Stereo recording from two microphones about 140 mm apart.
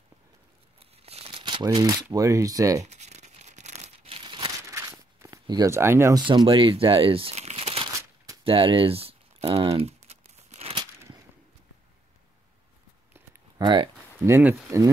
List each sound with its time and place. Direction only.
0.7 s tearing: 45° right (ahead or behind); by 2.0 s 30° right (ahead or behind)
2.1 s speech: 25° right (ahead or behind)
2.8 s tearing: 55° right (ahead or behind); by 4.5 s 40° right (ahead or behind)
4.6 s a sound: 20° right (ahead or behind)
6.1 s speech: 35° right (ahead or behind)
10.0 s crumpling: 50° right (ahead or behind)
11.0 s whip: 20° right (ahead or behind)
13.6 s a sound: 35° right (ahead or behind)
14.2 s speech: 20° right (ahead or behind)